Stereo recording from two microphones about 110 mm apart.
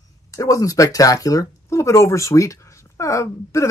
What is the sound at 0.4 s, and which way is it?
Speech, 30° left (ahead or behind).